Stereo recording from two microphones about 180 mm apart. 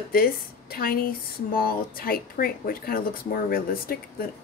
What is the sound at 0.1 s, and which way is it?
Speech, 55° left (ahead or behind).